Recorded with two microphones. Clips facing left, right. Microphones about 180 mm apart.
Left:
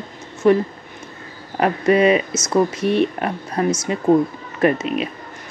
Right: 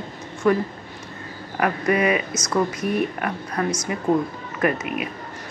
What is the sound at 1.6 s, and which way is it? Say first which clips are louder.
A woman's voice: left 5 dB; 25° left (ahead or behind).